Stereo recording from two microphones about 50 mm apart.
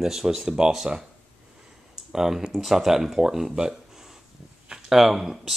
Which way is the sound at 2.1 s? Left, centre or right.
Centre.